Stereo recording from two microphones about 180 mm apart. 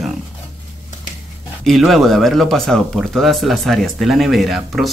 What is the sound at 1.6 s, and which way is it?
Speech, centre (ahead or behind).